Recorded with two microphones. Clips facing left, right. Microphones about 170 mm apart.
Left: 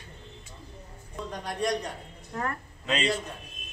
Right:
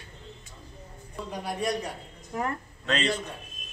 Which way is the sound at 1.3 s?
5° right (ahead or behind).